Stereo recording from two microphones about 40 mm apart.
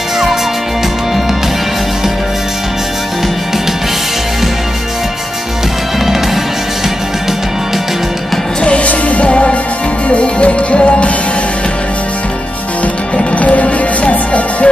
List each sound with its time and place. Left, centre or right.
8.6 s music: left
13.4 s music: left